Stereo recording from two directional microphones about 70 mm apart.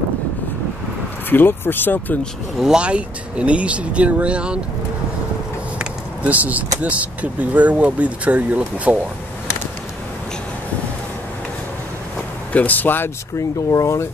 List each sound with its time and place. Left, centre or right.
1.3 s speech: left
2.6 s speech: centre
5.8 s vehicle: right
6.8 s speech: centre
12.5 s speech: left
13.4 s speech: left